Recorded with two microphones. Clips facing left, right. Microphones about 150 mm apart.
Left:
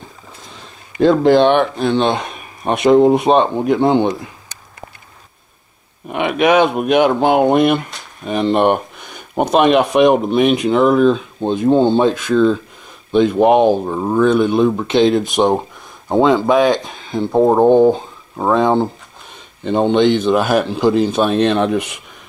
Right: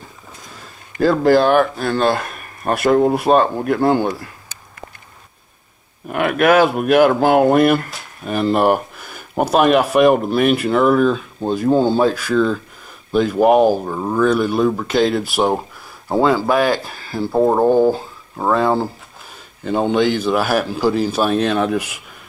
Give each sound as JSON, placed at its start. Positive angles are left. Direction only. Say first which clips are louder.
{"t": 0.5, "sound": "speech", "louder": "left 1 dB", "side_deg": -5}
{"t": 6.0, "sound": "speech", "louder": "even", "side_deg": 0}
{"t": 17.3, "sound": "speech", "louder": "left 3 dB", "side_deg": 20}
{"t": 18.5, "sound": "speech", "louder": "left 3 dB", "side_deg": -5}